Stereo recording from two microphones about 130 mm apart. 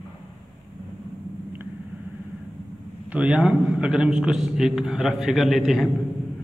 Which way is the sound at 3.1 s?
10° right (ahead or behind).